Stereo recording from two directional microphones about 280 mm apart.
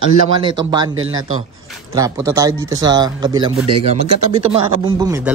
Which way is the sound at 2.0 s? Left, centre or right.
Centre.